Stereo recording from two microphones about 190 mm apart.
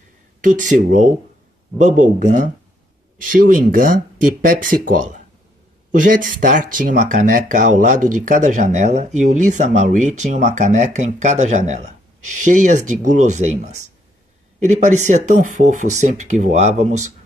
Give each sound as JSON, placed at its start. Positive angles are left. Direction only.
{"t": 0.4, "sound": "speech", "side_deg": -40}